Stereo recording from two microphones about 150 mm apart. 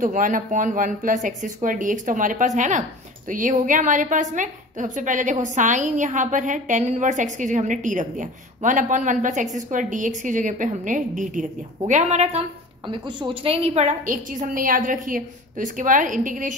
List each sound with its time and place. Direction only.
0.0 s a woman's voice: 60° right (ahead or behind)
12.8 s a woman's voice: 30° right (ahead or behind); by 16.5 s 60° right (ahead or behind)